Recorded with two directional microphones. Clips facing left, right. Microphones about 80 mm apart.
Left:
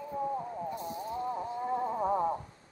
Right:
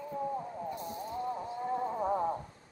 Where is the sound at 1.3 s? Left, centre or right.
Centre.